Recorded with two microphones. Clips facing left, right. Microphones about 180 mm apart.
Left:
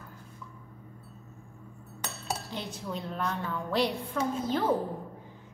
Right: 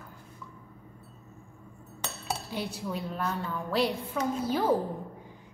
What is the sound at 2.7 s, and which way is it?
A woman's voice, 5° right (ahead or behind).